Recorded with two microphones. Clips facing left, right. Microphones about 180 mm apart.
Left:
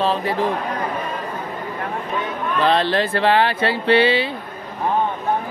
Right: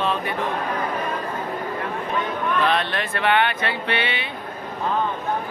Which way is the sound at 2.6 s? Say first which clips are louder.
Left 5 dB; 30° left (ahead or behind).